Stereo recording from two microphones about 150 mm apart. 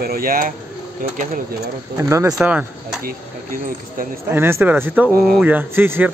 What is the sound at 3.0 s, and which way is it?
Speech, 65° right (ahead or behind).